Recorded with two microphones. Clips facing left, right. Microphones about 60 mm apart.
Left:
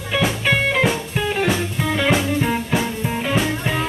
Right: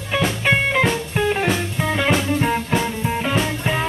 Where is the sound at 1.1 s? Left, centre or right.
Centre.